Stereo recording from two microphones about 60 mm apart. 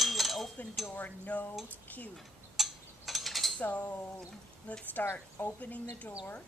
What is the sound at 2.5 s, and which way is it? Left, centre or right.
Mechanisms, centre.